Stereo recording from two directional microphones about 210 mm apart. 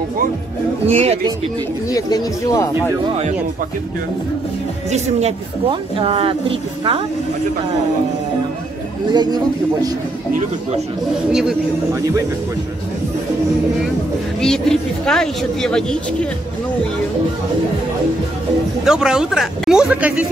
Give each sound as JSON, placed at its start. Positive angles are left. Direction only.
{"t": 0.8, "sound": "speech", "side_deg": -30}
{"t": 1.9, "sound": "speech", "side_deg": 15}
{"t": 4.9, "sound": "speech", "side_deg": -25}
{"t": 9.1, "sound": "speech", "side_deg": -20}
{"t": 14.4, "sound": "speech", "side_deg": 0}
{"t": 18.9, "sound": "speech", "side_deg": -5}